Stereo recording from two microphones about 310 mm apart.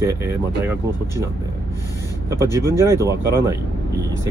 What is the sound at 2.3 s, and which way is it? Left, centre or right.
Speech, centre.